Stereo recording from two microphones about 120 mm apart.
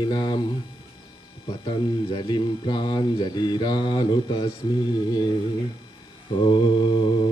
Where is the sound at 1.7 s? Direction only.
35° left (ahead or behind).